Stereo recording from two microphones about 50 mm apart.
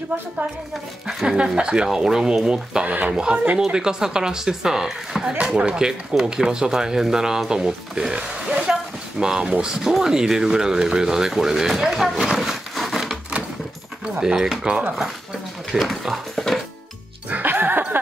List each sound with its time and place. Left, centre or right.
1.0 s speech: centre
2.9 s speech: right
3.5 s speech: centre
5.4 s speech: centre
12.4 s a sound: centre
14.2 s speech: centre
15.7 s speech: centre
17.3 s music: right